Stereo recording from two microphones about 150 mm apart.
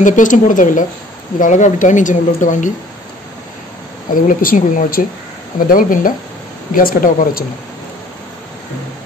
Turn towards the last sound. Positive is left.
turn(degrees=65)  # may be behind; listen again after turning